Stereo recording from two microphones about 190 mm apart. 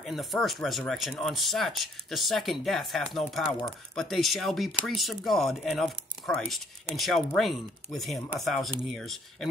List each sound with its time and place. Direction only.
0.0 s speech: centre (ahead or behind)